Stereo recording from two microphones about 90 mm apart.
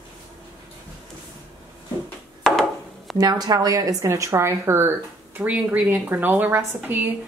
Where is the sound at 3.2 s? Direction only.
45° right (ahead or behind); by 4.9 s 30° right (ahead or behind).